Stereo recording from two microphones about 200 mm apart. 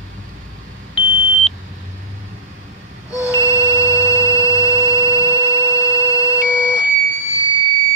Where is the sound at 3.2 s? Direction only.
15° left (ahead or behind).